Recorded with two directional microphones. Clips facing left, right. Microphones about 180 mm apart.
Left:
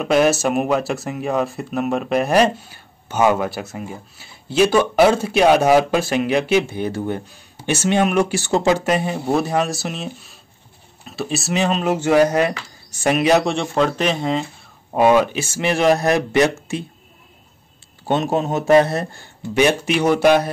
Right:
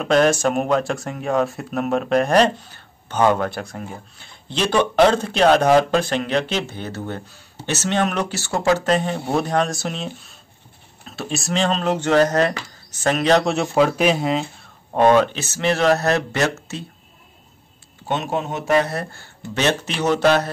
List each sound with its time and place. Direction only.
0.0 s speech: 5° left (ahead or behind)
13.5 s speech: 5° right (ahead or behind)
15.0 s speech: 10° left (ahead or behind)
18.0 s speech: 35° left (ahead or behind); by 20.4 s 10° left (ahead or behind)